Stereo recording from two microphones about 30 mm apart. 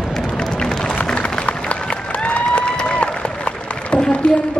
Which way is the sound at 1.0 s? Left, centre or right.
Left.